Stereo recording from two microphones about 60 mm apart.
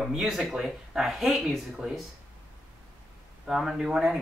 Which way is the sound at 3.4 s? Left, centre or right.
Centre.